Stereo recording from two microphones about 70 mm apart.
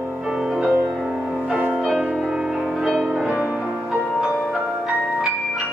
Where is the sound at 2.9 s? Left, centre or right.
Centre.